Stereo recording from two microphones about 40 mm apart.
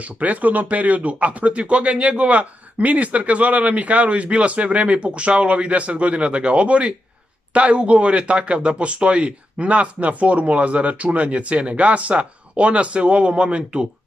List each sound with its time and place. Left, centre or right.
0.0 s speech: right